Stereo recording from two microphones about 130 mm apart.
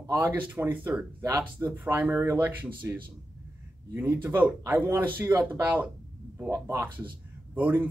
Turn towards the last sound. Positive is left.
turn(degrees=-15)  # may be behind; listen again after turning